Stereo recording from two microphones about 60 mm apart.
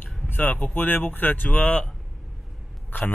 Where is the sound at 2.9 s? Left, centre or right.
Left.